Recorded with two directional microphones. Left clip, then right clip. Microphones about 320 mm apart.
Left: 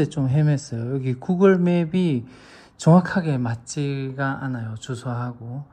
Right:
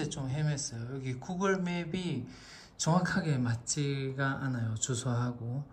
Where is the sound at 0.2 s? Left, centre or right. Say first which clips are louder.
Left 14 dB; left.